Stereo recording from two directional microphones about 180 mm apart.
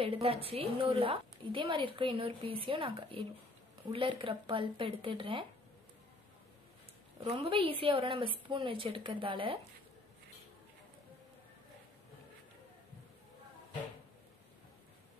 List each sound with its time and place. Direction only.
0.0 s a woman's voice: 30° right (ahead or behind)
7.2 s a woman's voice: 30° right (ahead or behind)